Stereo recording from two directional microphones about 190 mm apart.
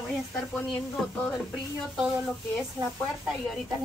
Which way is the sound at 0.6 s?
5° left (ahead or behind).